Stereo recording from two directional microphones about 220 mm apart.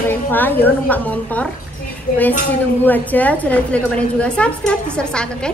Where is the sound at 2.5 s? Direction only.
10° left (ahead or behind).